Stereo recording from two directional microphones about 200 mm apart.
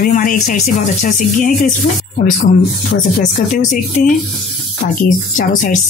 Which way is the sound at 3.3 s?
40° left (ahead or behind).